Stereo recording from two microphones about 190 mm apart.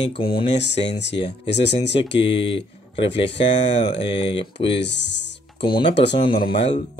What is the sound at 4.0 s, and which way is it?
Speech, 25° left (ahead or behind).